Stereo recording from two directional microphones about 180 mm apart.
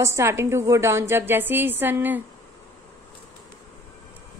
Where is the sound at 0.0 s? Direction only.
15° right (ahead or behind).